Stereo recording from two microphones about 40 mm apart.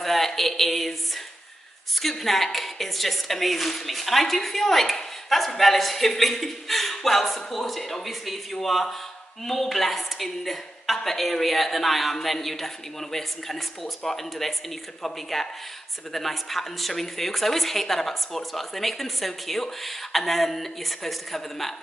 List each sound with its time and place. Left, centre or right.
0.0 s a woman's voice: centre